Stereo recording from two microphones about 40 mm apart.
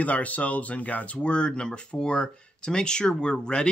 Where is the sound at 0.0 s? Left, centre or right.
Left.